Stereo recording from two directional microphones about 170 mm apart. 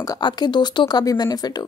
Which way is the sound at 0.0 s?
25° left (ahead or behind).